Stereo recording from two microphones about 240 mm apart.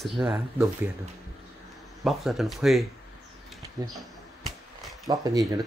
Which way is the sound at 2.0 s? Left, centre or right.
Centre.